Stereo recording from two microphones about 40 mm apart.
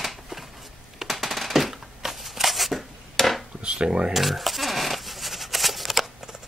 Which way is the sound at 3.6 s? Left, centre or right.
Right.